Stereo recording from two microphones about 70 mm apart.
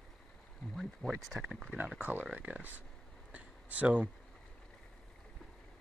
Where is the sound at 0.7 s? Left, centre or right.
Centre.